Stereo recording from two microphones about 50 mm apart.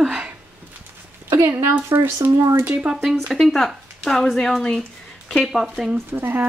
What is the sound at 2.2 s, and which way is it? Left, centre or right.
Speech, right.